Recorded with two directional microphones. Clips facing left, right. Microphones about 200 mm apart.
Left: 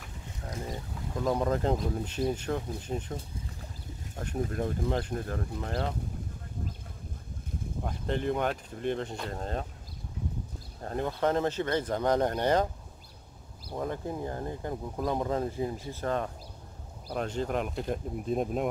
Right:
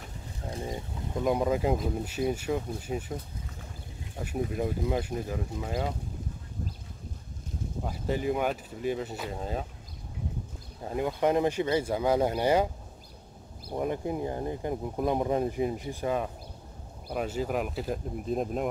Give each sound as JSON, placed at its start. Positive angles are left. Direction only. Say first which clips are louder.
{"t": 0.7, "sound": "speech", "louder": "right 2 dB", "side_deg": -20}
{"t": 4.2, "sound": "speech", "louder": "right 1 dB", "side_deg": -5}
{"t": 7.8, "sound": "speech", "louder": "right 1 dB", "side_deg": -5}
{"t": 10.8, "sound": "speech", "louder": "right 2 dB", "side_deg": -10}
{"t": 13.7, "sound": "speech", "louder": "right 3 dB", "side_deg": -15}